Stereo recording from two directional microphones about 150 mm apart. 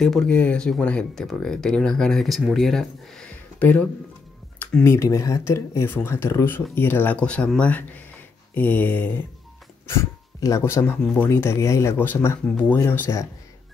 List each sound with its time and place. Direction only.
0.0 s speech: 5° left (ahead or behind)